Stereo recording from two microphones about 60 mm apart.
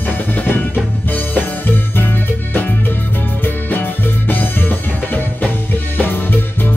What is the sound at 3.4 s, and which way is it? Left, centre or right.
Music, left.